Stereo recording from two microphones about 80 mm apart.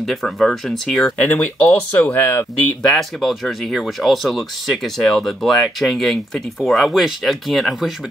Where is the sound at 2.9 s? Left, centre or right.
Centre.